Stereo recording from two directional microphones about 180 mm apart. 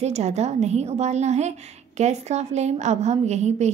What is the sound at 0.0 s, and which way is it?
A woman's voice, 40° right (ahead or behind).